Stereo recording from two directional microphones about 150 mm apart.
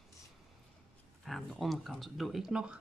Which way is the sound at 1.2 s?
Centre (ahead or behind).